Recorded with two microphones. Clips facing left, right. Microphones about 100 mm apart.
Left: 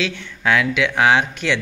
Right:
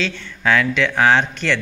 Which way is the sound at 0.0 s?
10° left (ahead or behind).